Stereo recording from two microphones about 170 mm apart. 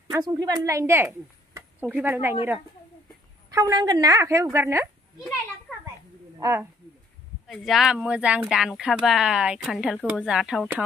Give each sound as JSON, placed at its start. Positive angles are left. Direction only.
{"t": 0.1, "sound": "a woman's voice", "side_deg": -20}
{"t": 3.4, "sound": "speech", "side_deg": -20}
{"t": 5.7, "sound": "children playing", "side_deg": 5}
{"t": 6.4, "sound": "speech", "side_deg": -15}
{"t": 7.4, "sound": "speech", "side_deg": 0}